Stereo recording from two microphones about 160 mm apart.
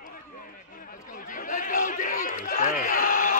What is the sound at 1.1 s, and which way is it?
Chatter, 55° left (ahead or behind).